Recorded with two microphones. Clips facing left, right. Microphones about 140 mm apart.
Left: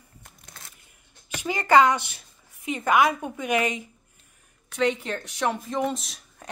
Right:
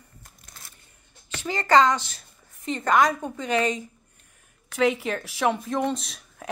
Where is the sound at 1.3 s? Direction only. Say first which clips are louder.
Left 1 dB; 15° left (ahead or behind).